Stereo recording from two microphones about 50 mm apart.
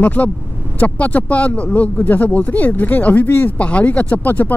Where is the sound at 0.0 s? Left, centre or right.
Left.